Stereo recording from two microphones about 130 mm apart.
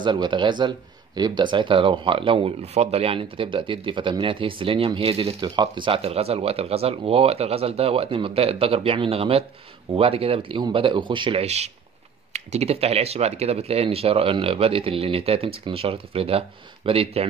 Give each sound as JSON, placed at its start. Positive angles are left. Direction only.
{"t": 0.0, "sound": "speech", "side_deg": -35}
{"t": 11.4, "sound": "speech", "side_deg": -55}